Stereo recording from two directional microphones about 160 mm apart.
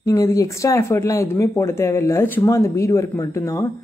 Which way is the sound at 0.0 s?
20° left (ahead or behind).